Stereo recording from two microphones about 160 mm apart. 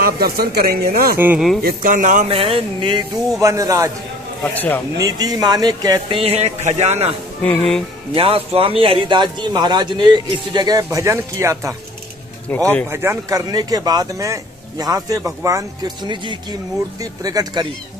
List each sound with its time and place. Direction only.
0.0 s speech: 75° right (ahead or behind)
1.1 s speech: 15° right (ahead or behind)
1.6 s speech: 65° right (ahead or behind)
2.2 s speech: 35° right (ahead or behind)
4.4 s a man's voice: 10° left (ahead or behind)
4.9 s speech: 25° right (ahead or behind); by 7.2 s 40° right (ahead or behind)
7.4 s speech: 5° left (ahead or behind)
8.1 s speech: 35° right (ahead or behind); by 11.7 s 15° right (ahead or behind)
12.4 s a man's voice: 10° left (ahead or behind)
12.9 s speech: 15° right (ahead or behind)